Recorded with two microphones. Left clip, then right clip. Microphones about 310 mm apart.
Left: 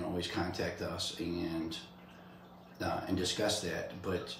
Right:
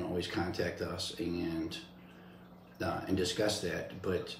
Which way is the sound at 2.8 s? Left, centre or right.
Centre.